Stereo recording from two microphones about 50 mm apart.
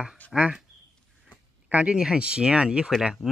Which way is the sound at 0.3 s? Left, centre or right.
Centre.